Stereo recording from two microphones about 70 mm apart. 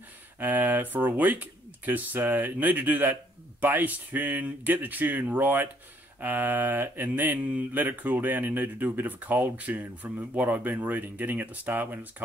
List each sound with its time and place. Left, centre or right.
0.4 s speech: right